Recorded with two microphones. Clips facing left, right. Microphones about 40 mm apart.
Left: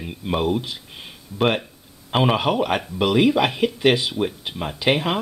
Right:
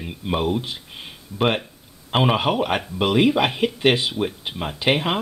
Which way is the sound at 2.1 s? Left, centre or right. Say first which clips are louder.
Even; centre.